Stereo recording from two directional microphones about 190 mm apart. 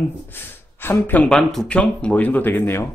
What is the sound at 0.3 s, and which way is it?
Speech, 10° left (ahead or behind).